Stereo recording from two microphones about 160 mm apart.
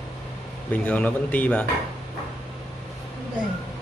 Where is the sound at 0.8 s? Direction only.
10° left (ahead or behind).